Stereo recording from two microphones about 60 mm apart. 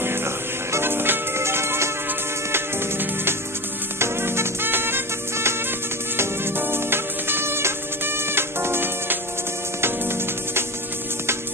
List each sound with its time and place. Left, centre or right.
0.0 s music: right